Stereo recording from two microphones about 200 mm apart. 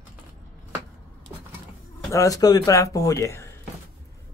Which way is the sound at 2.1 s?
15° left (ahead or behind).